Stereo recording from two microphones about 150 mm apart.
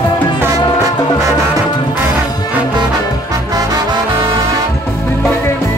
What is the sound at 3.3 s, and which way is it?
Music, 25° right (ahead or behind).